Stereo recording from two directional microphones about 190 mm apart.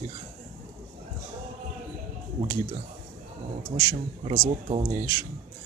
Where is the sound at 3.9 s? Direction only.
30° right (ahead or behind).